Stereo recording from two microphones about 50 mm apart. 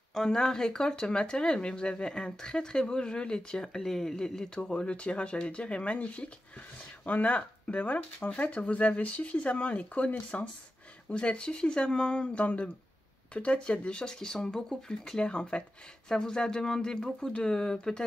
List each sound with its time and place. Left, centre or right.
0.1 s speech: centre